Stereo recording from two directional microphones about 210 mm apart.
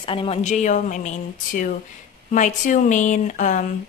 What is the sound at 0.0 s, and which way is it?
A woman's voice, 25° left (ahead or behind).